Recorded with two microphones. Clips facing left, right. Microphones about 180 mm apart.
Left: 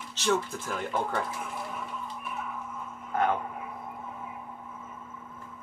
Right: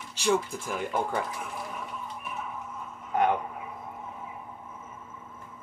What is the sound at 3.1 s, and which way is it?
Speech, 20° right (ahead or behind).